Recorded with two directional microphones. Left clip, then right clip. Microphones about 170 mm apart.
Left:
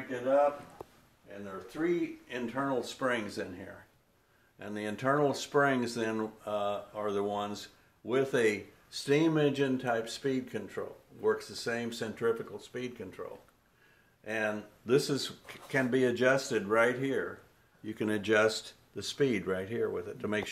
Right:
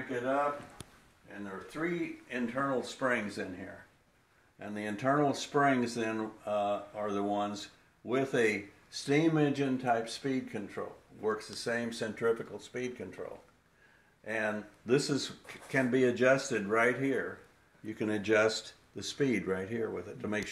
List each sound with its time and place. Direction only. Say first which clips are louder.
2.2 s speech: right 1 dB; 35° left (ahead or behind)
4.6 s speech: left 1 dB; 35° left (ahead or behind)
14.2 s speech: left 1 dB; 35° left (ahead or behind)